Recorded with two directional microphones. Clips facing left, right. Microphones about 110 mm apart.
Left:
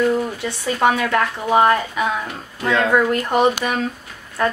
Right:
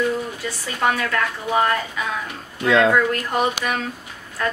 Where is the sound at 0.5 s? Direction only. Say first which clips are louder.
Left 4 dB; 25° left (ahead or behind).